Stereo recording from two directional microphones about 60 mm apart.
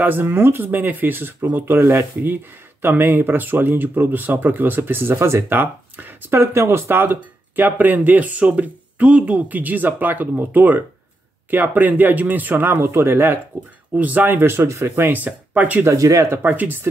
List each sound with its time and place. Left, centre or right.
0.0 s speech: right
6.4 s speech: right
13.9 s speech: right
15.1 s speech: right
15.8 s speech: right
16.4 s speech: right